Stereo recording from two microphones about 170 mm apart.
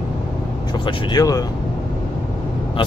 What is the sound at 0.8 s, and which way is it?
Speech, 25° left (ahead or behind).